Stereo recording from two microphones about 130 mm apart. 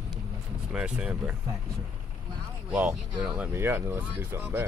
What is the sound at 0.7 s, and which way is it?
Speech, 5° right (ahead or behind).